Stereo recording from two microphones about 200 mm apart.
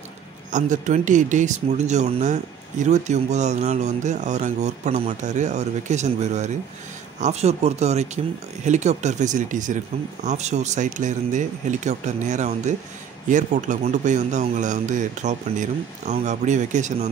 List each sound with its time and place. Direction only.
0.5 s speech: 40° right (ahead or behind)